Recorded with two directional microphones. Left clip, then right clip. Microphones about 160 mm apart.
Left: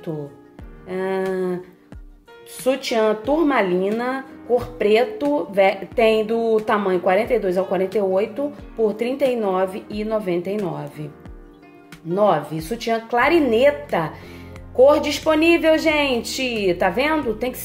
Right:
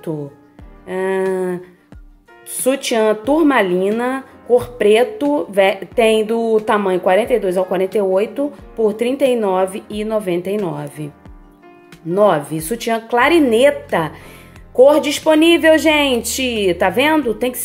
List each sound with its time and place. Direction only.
0.8 s speech: 40° right (ahead or behind)
2.6 s speech: 40° right (ahead or behind)
12.1 s speech: 45° right (ahead or behind)